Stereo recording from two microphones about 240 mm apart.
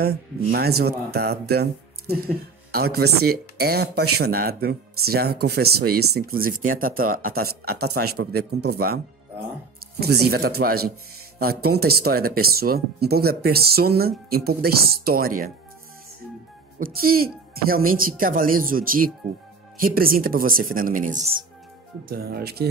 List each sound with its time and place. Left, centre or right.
0.0 s speech: right
16.8 s speech: right